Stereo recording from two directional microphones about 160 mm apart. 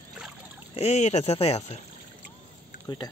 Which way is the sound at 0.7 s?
40° left (ahead or behind).